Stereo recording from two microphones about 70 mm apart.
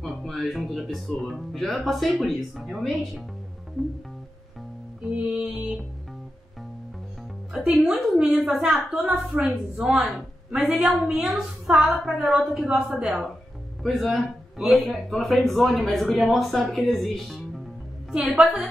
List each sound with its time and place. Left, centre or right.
0.0 s speech: centre
5.1 s a woman's voice: centre
7.7 s a woman's voice: centre
13.8 s speech: centre